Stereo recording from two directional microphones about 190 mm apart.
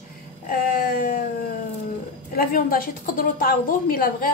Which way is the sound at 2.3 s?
50° left (ahead or behind).